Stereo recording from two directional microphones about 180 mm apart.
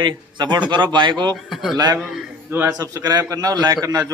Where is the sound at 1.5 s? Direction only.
Centre (ahead or behind).